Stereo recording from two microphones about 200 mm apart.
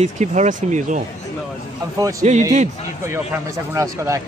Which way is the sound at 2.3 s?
35° right (ahead or behind).